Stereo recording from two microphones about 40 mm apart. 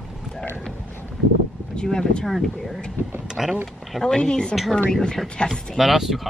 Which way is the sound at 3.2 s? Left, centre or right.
Centre.